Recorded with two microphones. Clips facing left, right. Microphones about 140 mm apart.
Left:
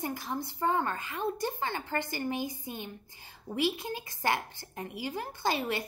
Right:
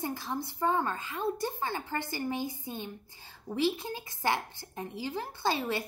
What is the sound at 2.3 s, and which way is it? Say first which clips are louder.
A woman's voice: even; 15° left (ahead or behind).